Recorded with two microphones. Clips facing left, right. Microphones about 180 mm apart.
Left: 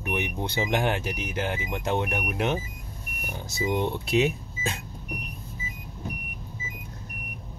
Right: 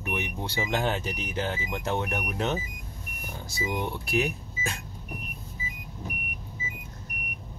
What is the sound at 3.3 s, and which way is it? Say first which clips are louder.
Speech: left 4 dB; 20° left (ahead or behind).